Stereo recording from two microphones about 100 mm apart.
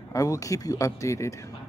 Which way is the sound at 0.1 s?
35° left (ahead or behind).